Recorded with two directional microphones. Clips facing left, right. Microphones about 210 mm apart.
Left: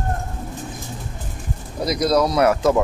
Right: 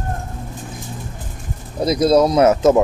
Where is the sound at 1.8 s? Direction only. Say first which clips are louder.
Right 5 dB; 25° right (ahead or behind).